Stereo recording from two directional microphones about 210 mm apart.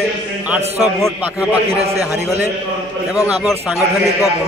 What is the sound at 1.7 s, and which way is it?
Speech, 30° right (ahead or behind).